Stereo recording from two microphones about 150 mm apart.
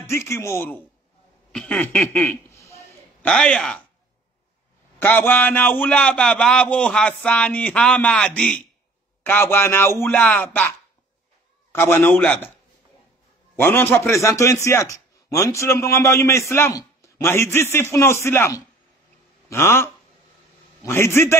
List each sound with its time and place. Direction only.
0.0 s a man's voice: 15° left (ahead or behind)
1.5 s a man's voice: 5° left (ahead or behind)
4.9 s a man's voice: 15° left (ahead or behind)
11.7 s a man's voice: 15° left (ahead or behind)
13.6 s a man's voice: 15° left (ahead or behind)